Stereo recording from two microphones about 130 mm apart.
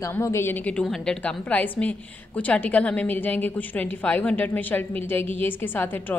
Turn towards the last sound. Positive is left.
turn(degrees=15)  # may be behind; listen again after turning